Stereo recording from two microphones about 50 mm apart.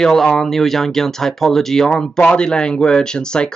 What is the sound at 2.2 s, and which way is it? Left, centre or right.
Speech, left.